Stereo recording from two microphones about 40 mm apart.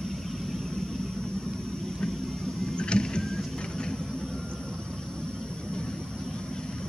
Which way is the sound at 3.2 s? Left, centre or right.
Centre.